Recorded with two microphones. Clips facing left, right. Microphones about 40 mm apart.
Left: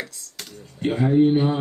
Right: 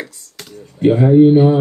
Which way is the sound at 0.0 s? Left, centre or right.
Centre.